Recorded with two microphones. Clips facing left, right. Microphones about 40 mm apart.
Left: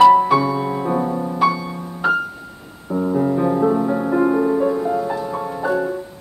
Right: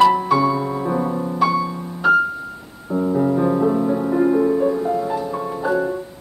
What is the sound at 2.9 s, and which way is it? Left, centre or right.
Music, centre.